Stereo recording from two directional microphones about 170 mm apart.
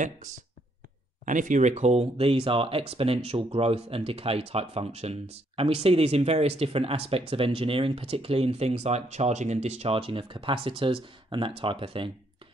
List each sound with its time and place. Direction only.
0.0 s speech: 50° right (ahead or behind); by 12.1 s 30° right (ahead or behind)